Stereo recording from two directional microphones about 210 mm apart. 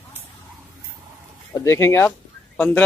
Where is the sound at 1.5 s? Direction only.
15° left (ahead or behind).